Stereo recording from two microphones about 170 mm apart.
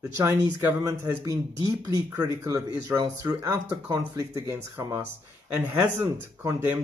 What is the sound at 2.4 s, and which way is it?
Speech, 20° right (ahead or behind).